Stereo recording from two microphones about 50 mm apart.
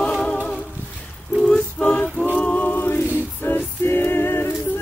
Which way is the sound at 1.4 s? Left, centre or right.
Centre.